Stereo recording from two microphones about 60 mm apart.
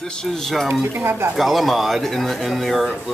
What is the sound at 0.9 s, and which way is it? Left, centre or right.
Speech, right.